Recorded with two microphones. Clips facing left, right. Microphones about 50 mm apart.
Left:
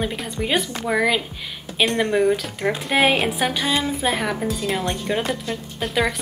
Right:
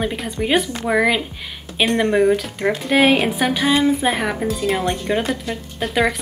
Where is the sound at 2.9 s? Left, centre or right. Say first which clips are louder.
Right 3 dB; centre.